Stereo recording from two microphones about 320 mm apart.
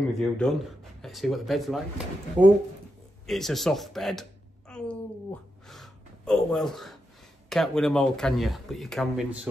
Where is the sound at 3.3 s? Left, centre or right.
Centre.